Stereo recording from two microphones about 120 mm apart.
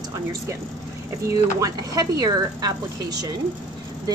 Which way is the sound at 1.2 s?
30° right (ahead or behind).